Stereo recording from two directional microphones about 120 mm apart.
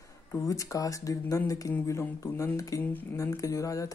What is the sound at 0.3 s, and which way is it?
Speech, 25° left (ahead or behind).